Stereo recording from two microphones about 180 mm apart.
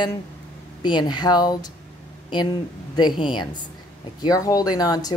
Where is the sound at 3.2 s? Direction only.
25° left (ahead or behind).